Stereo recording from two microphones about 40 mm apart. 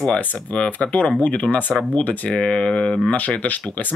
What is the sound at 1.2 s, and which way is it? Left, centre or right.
Speech, left.